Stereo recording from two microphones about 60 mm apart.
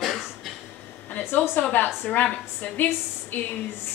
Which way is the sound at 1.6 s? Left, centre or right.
Left.